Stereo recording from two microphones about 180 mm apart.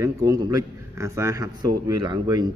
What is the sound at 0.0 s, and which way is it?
A man's voice, 20° right (ahead or behind).